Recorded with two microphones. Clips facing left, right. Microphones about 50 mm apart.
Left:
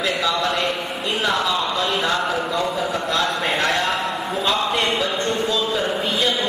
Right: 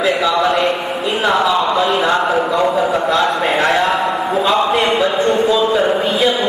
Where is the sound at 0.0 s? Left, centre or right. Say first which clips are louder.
Right 7 dB; centre.